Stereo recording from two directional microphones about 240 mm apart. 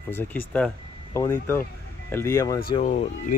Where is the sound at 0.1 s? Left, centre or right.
Centre.